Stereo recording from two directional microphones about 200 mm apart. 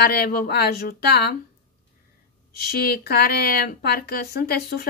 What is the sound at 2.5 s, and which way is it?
Speech, 50° left (ahead or behind).